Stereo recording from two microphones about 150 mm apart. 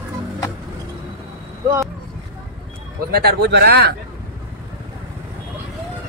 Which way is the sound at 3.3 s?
90° right.